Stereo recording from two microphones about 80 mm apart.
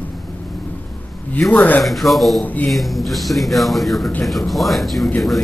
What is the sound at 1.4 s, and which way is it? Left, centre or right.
Speech, centre.